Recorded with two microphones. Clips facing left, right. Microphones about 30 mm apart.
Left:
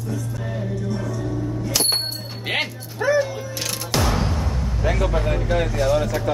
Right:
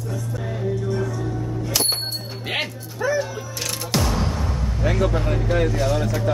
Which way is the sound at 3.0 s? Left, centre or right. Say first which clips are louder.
Left 2 dB; left.